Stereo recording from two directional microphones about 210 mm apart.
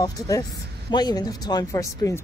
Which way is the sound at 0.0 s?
15° left (ahead or behind).